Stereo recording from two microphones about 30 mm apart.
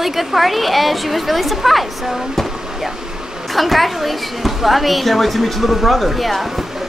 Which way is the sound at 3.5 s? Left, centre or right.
Centre.